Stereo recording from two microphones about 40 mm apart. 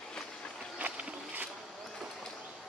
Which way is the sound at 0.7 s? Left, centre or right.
Right.